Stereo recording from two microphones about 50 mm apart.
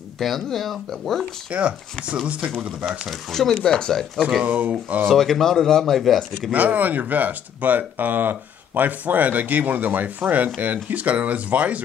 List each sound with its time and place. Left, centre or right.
0.2 s speech: centre
1.5 s speech: right
3.1 s speech: centre
4.5 s speech: right
5.0 s speech: centre
6.5 s speech: right